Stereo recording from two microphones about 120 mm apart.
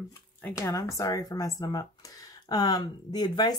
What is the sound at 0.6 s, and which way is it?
Speech, 25° left (ahead or behind).